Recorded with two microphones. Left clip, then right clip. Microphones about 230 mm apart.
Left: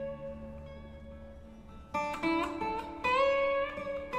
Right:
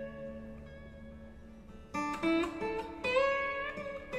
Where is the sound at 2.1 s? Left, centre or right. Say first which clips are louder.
Right 2 dB; left.